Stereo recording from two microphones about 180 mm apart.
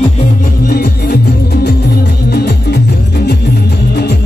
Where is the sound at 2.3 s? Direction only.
65° left (ahead or behind).